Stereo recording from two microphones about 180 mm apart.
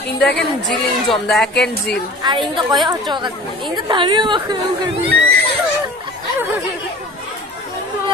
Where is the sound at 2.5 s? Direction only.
25° right (ahead or behind).